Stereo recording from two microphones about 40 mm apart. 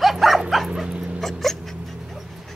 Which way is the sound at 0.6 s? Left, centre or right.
Centre.